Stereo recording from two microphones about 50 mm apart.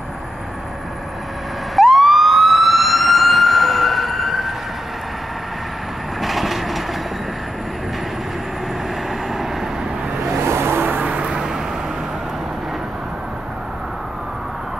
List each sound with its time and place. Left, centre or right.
1.8 s emergency vehicle: centre
6.2 s vehicle: centre
9.3 s vehicle: centre
10.4 s vehicle: right
11.1 s vehicle: right
11.3 s vehicle: centre